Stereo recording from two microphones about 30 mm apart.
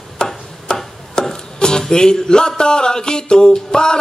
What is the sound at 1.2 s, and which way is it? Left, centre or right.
Music, left.